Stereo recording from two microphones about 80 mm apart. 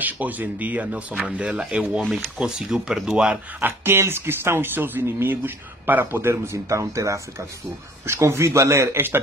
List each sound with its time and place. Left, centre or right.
0.0 s speech: right
1.1 s speech: centre
3.6 s speech: right